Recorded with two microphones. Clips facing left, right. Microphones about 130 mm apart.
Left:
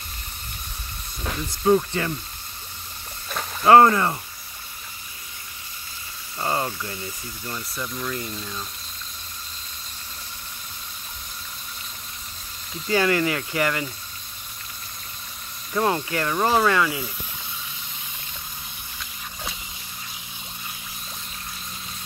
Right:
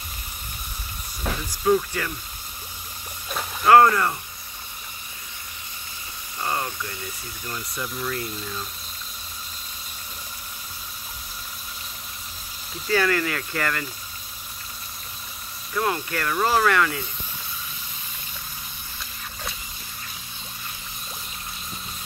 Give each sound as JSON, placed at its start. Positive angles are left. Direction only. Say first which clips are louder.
{"t": 1.6, "sound": "speech", "louder": "left 2 dB", "side_deg": 25}
{"t": 3.6, "sound": "speech", "louder": "left 1 dB", "side_deg": 25}
{"t": 6.4, "sound": "speech", "louder": "left 2 dB", "side_deg": 25}
{"t": 7.5, "sound": "speech", "louder": "right 1 dB", "side_deg": 0}
{"t": 12.9, "sound": "speech", "louder": "left 2 dB", "side_deg": 20}
{"t": 15.7, "sound": "speech", "louder": "left 3 dB", "side_deg": 25}